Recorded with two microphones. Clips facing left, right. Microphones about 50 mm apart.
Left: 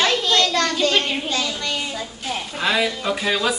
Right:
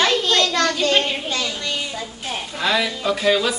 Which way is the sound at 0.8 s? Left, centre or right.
Right.